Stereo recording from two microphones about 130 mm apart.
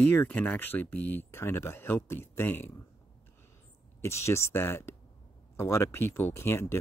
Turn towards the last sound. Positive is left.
turn(degrees=20)  # may be behind; listen again after turning